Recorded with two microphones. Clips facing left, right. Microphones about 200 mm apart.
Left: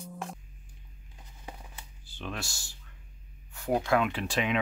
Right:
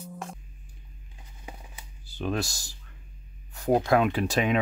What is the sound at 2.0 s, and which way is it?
Speech, 40° right (ahead or behind).